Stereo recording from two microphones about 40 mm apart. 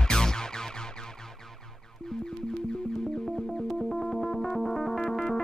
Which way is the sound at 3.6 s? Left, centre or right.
Centre.